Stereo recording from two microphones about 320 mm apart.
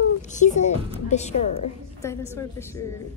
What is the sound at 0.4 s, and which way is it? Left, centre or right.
Speech, left.